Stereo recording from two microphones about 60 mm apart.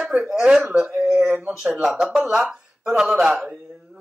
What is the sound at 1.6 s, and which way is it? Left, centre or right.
Speech, centre.